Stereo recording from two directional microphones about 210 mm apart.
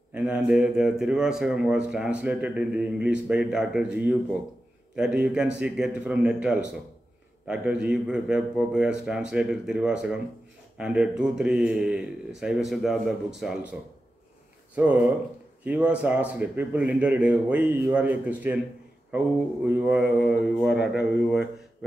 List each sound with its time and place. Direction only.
0.1 s speech: 5° right (ahead or behind)
14.8 s a man's voice: 5° right (ahead or behind)